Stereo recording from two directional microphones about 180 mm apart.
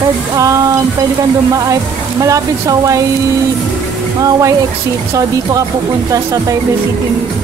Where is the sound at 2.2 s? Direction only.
20° right (ahead or behind).